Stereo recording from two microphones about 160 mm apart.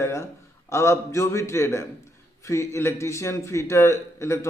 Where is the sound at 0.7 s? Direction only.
15° left (ahead or behind).